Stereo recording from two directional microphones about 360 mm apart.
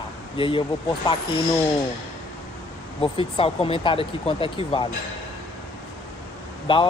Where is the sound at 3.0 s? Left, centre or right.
Centre.